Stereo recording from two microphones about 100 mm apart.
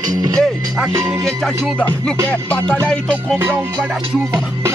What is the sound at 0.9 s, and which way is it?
Speech, 30° right (ahead or behind).